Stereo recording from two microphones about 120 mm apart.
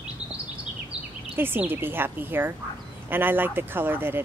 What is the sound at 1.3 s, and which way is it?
Speech, 15° right (ahead or behind).